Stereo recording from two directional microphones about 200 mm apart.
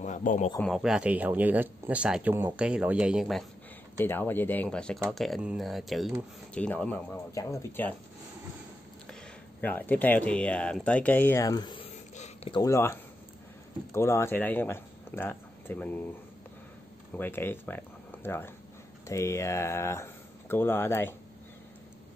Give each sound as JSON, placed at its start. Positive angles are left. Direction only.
{"t": 0.0, "sound": "a man's voice", "side_deg": 40}
{"t": 0.6, "sound": "speech", "side_deg": 0}
{"t": 4.0, "sound": "speech", "side_deg": 10}
{"t": 9.6, "sound": "speech", "side_deg": 10}
{"t": 17.2, "sound": "speech", "side_deg": 10}